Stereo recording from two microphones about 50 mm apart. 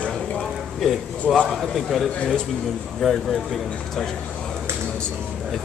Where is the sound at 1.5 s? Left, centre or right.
Centre.